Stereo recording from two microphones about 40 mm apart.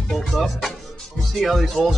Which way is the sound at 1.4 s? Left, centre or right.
Centre.